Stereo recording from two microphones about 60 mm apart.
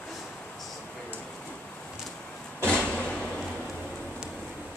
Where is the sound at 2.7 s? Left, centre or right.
Centre.